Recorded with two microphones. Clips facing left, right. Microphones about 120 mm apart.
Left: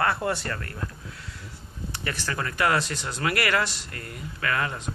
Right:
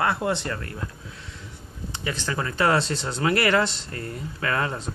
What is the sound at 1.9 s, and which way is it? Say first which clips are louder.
Speech: right 2 dB; 20° right (ahead or behind).